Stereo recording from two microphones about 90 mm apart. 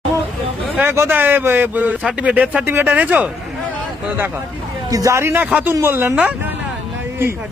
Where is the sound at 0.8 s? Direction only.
25° right (ahead or behind).